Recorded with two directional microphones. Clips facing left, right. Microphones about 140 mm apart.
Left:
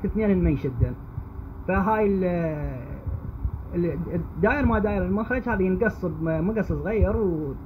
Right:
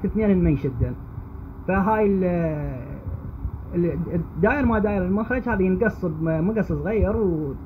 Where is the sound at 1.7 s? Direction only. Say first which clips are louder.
Right 2 dB; 15° right (ahead or behind).